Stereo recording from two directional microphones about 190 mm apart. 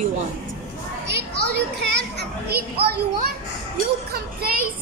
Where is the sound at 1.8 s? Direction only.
60° right (ahead or behind).